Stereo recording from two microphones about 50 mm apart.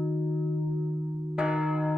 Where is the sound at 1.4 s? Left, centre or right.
Centre.